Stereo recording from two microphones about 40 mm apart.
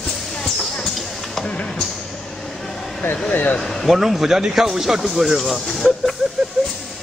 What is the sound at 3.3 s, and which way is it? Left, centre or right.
Speech, left.